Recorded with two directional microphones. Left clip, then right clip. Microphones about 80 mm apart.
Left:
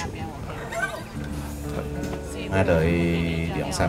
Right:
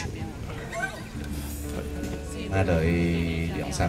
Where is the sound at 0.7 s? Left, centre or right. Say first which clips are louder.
Left 4 dB; left.